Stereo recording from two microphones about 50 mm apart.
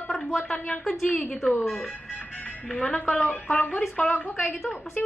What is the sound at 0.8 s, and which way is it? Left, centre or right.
Speech, centre.